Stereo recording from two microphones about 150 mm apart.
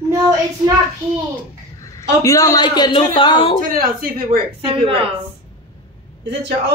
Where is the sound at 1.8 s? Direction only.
20° left (ahead or behind).